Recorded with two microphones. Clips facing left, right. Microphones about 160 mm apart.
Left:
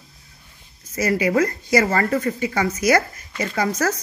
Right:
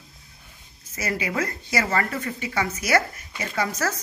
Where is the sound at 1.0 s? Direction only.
40° left (ahead or behind).